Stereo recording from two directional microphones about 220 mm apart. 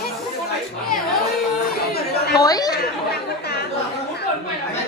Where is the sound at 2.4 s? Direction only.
15° left (ahead or behind).